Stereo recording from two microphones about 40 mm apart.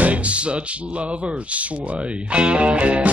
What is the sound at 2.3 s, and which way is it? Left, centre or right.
Speech, right.